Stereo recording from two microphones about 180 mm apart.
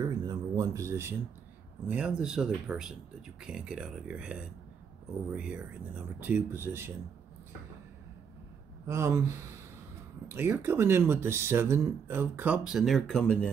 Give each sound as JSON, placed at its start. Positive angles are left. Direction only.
{"t": 0.0, "sound": "a sound", "side_deg": -20}
{"t": 1.9, "sound": "speech", "side_deg": -5}
{"t": 8.8, "sound": "speech", "side_deg": -15}